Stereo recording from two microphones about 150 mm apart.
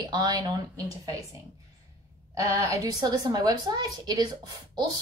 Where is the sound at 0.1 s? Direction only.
25° right (ahead or behind).